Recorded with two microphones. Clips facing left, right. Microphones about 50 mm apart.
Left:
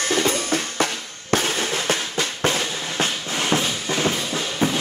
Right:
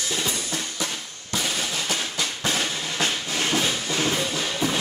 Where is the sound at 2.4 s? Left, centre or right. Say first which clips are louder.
Left 3 dB; left.